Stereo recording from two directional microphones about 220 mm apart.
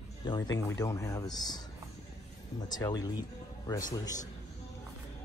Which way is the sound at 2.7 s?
20° left (ahead or behind).